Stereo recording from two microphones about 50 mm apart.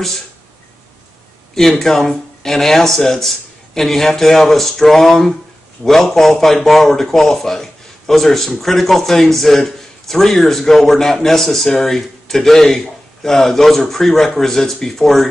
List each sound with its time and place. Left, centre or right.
1.5 s a man's voice: centre